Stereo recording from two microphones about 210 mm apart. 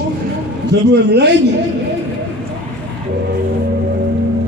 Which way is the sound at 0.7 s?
55° right (ahead or behind).